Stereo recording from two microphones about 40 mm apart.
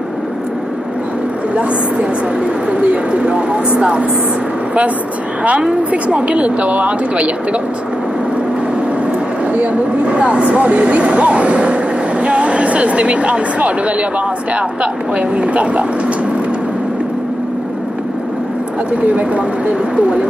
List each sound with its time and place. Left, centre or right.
1.5 s speech: right
6.2 s speech: right
9.5 s speech: right
18.9 s speech: right